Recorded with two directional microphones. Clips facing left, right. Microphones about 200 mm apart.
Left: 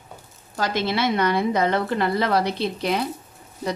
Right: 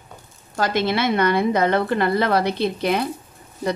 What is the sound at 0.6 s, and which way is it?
Speech, 55° right (ahead or behind).